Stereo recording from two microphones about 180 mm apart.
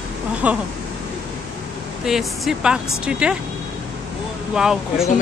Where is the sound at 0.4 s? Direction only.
10° right (ahead or behind).